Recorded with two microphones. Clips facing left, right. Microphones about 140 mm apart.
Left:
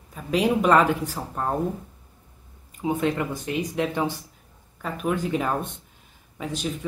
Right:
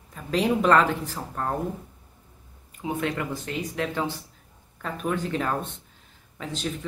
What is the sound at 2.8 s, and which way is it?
Speech, 20° left (ahead or behind).